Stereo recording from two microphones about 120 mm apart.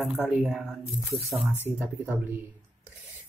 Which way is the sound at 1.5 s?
15° right (ahead or behind).